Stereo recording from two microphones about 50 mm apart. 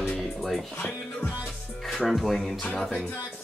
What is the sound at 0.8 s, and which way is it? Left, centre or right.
Speech, left.